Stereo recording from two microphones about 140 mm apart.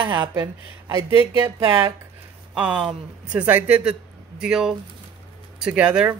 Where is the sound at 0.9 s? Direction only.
20° right (ahead or behind).